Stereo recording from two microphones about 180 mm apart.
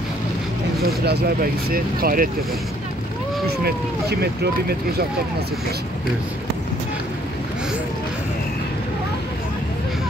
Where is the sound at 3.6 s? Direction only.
65° right (ahead or behind).